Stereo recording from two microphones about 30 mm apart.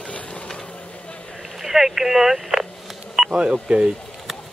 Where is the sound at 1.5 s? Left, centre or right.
Centre.